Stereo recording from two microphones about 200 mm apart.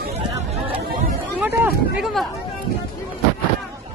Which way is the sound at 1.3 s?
10° right (ahead or behind).